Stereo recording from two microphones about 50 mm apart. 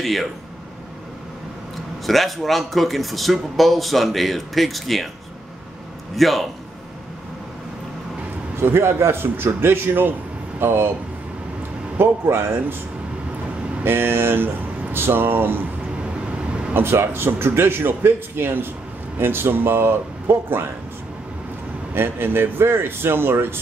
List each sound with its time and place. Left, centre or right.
0.0 s speech: centre
2.0 s speech: centre
6.1 s speech: centre
8.5 s a man's voice: right
12.0 s a man's voice: right
13.8 s a man's voice: right
16.0 s vehicle: right
16.7 s a man's voice: right
21.9 s a man's voice: right